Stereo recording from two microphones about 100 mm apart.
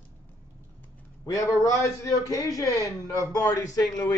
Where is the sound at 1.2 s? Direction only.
35° left (ahead or behind).